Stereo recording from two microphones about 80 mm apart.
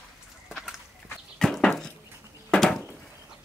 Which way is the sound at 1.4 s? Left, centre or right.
Centre.